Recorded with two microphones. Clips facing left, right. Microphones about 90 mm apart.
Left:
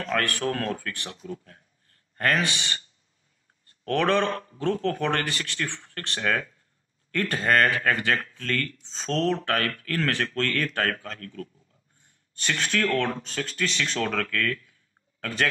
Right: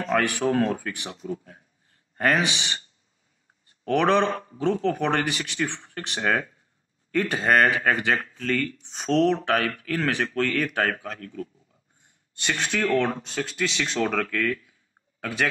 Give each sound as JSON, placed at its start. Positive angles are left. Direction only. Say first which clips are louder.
{"t": 0.0, "sound": "a man's voice", "louder": "right 3 dB", "side_deg": -15}